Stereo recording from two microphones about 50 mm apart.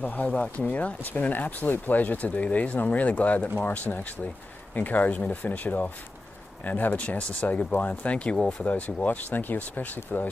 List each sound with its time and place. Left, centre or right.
0.0 s speech: left
8.4 s speech: centre
8.6 s speech: left